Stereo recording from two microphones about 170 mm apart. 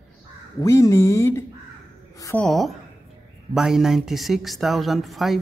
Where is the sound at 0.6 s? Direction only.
20° left (ahead or behind).